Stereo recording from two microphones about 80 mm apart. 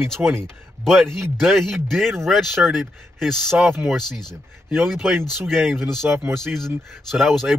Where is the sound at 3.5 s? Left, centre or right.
Right.